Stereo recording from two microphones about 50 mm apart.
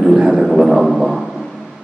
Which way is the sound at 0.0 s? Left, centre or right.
Centre.